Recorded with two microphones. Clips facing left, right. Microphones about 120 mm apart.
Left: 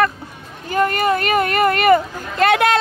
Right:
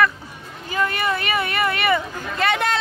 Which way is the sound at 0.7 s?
50° left (ahead or behind).